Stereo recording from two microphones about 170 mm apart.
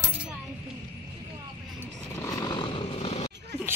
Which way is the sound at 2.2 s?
20° left (ahead or behind).